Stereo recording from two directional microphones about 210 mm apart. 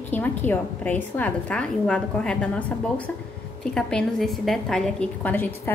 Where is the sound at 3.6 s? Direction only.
5° left (ahead or behind).